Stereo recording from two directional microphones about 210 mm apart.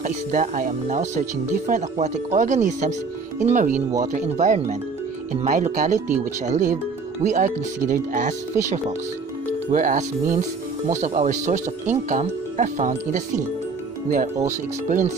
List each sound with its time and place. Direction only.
0.0 s speech: 35° right (ahead or behind)